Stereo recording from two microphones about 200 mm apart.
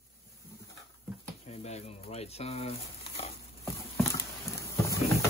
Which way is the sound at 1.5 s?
30° left (ahead or behind).